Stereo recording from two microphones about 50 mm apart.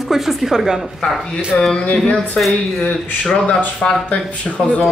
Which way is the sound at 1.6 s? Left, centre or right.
Centre.